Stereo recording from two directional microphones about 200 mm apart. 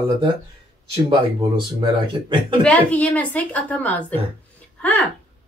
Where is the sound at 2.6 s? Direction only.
5° left (ahead or behind).